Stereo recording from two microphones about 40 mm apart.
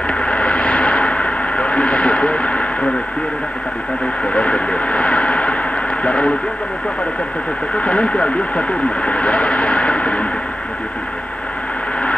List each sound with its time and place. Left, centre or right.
0.2 s gong: left
4.3 s radio: left
6.0 s speech: left
7.7 s speech: left